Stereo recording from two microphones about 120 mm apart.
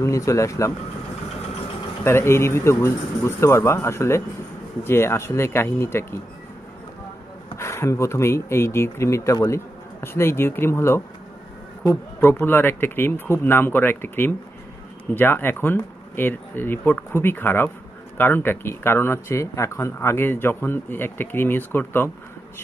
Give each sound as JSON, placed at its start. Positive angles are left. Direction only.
{"t": 0.0, "sound": "speech", "side_deg": 25}
{"t": 2.0, "sound": "speech", "side_deg": 20}
{"t": 7.5, "sound": "speech", "side_deg": 20}